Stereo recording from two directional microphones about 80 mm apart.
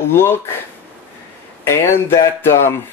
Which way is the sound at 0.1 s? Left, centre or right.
Left.